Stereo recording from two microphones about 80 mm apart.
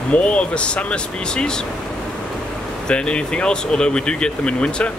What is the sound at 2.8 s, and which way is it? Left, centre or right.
Speech, centre.